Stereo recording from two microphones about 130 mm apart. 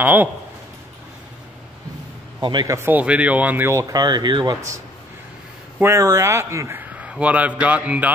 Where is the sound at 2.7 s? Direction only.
15° right (ahead or behind).